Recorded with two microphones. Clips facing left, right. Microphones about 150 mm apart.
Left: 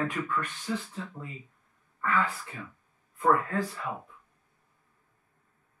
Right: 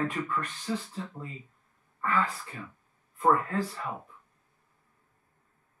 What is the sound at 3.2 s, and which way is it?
Speech, 30° right (ahead or behind).